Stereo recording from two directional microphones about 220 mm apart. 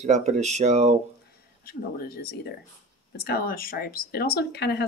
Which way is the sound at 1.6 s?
45° left (ahead or behind).